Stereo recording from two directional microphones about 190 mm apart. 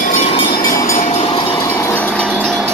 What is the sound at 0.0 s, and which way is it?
Train, 40° left (ahead or behind).